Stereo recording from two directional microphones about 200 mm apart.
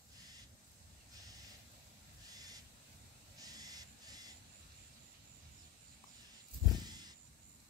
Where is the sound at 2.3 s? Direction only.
20° right (ahead or behind).